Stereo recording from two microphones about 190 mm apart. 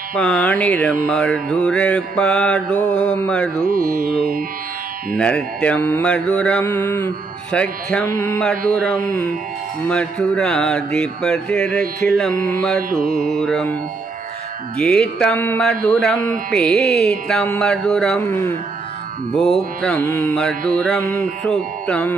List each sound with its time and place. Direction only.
0.2 s mantra: 5° left (ahead or behind)
4.0 s music: 50° right (ahead or behind)
5.1 s mantra: 5° left (ahead or behind)
14.8 s mantra: 5° left (ahead or behind)